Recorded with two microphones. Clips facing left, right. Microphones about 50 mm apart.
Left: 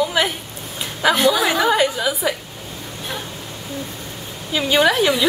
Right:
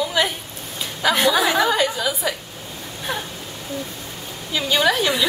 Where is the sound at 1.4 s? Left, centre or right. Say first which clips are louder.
Left 1 dB; centre.